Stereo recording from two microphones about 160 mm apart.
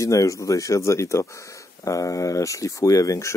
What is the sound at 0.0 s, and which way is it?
Speech, 20° left (ahead or behind).